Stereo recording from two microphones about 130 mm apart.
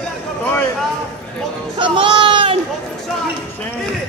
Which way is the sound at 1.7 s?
40° right (ahead or behind).